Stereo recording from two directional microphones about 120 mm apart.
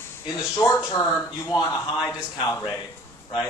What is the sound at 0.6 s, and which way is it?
Speech, 25° left (ahead or behind).